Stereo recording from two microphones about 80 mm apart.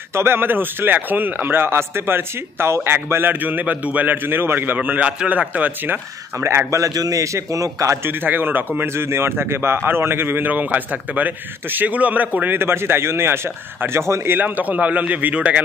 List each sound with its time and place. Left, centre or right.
0.1 s a man's voice: right
6.7 s a man's voice: right
8.1 s a man's voice: right